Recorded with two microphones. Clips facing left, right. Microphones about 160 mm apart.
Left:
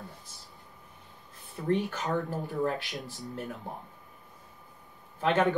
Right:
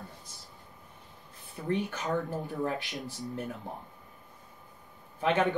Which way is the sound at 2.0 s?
20° right (ahead or behind).